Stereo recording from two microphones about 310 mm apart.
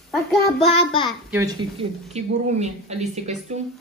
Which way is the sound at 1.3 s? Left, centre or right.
Centre.